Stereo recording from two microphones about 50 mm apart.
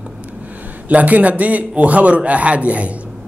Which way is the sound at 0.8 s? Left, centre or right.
Right.